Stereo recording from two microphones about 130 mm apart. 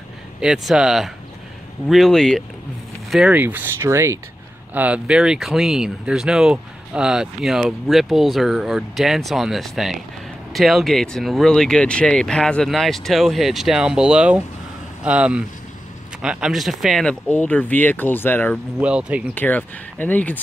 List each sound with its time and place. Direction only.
0.4 s speech: 5° right (ahead or behind)
3.3 s speech: 15° right (ahead or behind)
4.7 s speech: 10° right (ahead or behind); by 18.6 s 15° left (ahead or behind)
18.8 s speech: 10° right (ahead or behind)
19.3 s speech: 10° left (ahead or behind)